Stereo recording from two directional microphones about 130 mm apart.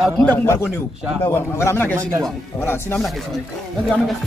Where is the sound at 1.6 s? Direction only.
20° left (ahead or behind).